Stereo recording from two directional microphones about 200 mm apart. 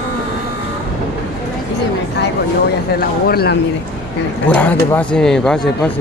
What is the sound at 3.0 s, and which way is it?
Speech, 50° left (ahead or behind).